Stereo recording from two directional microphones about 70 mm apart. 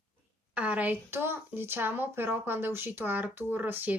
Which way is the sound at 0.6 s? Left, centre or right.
Right.